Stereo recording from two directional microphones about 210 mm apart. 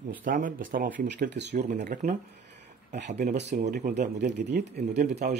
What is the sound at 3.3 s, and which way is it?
Speech, 55° right (ahead or behind).